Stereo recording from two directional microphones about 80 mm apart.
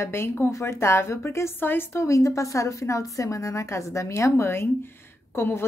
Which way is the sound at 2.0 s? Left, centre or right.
Left.